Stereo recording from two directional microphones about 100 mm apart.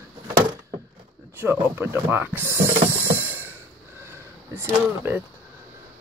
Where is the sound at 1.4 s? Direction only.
20° right (ahead or behind).